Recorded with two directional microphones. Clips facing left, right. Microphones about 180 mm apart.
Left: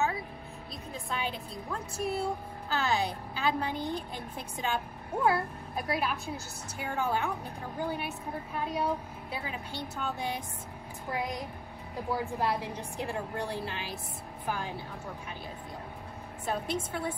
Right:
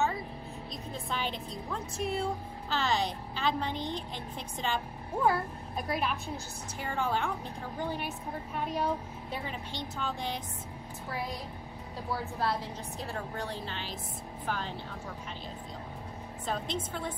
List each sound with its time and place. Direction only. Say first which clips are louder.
0.9 s a woman's voice: even; centre (ahead or behind)
16.4 s a woman's voice: left 2 dB; 10° left (ahead or behind)